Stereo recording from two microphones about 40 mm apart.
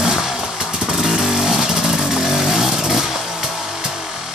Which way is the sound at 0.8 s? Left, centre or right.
Centre.